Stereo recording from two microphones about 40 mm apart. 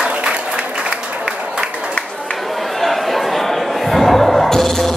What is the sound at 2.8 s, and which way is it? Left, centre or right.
Music, centre.